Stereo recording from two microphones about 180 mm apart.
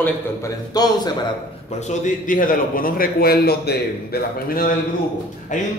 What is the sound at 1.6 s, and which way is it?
A man's voice, 40° left (ahead or behind).